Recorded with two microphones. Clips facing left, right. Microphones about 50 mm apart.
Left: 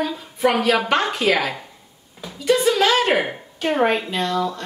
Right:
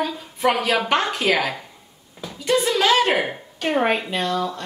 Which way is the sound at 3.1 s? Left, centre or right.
Centre.